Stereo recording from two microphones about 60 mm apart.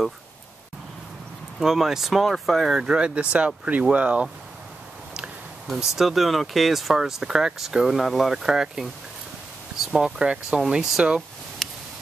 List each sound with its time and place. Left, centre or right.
1.6 s speech: centre
2.8 s speech: centre
5.9 s speech: centre
11.6 s a sound: centre